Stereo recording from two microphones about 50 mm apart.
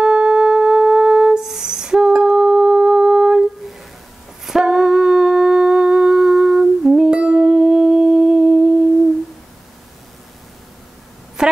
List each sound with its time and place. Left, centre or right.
0.0 s music: centre
4.5 s humming: centre